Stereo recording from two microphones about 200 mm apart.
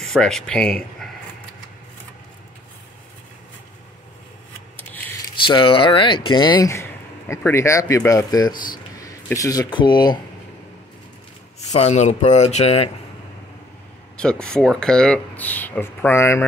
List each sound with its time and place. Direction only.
0.0 s speech: centre (ahead or behind)
5.3 s speech: 25° left (ahead or behind)
11.7 s speech: 35° left (ahead or behind)
14.1 s speech: 5° left (ahead or behind)